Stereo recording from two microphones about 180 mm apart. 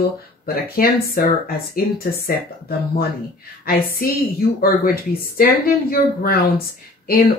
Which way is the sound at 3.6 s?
55° left (ahead or behind).